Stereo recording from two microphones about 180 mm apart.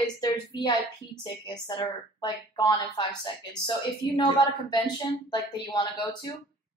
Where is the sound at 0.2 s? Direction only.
25° left (ahead or behind).